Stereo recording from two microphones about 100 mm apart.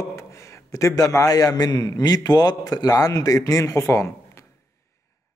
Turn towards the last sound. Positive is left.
turn(degrees=30)  # may be behind; listen again after turning